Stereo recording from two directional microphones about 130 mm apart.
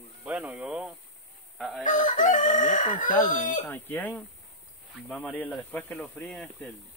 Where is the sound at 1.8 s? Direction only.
80° left.